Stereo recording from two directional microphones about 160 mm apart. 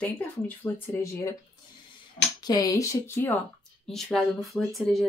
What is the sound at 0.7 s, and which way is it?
Speech, 20° left (ahead or behind).